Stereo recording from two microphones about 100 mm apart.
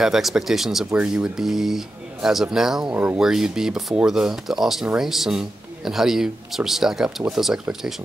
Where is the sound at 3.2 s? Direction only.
5° right (ahead or behind).